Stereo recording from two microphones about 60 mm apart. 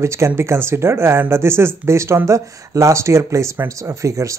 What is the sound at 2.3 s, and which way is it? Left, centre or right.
Speech, right.